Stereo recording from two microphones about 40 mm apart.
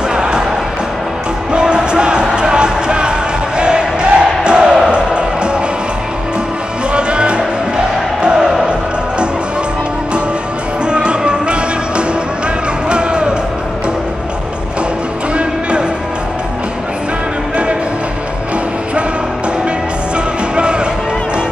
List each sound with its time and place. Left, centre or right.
0.1 s music: right
1.5 s music: right
6.9 s music: right
10.9 s music: right